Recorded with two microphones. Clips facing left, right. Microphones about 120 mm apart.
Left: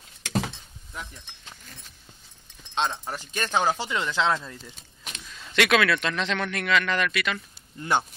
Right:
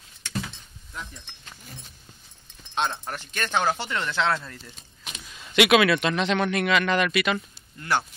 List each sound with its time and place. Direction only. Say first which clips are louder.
0.2 s a sound: left 5 dB; 90° left
2.9 s speech: left 1 dB; 10° left (ahead or behind)
5.0 s speech: even; 5° right (ahead or behind)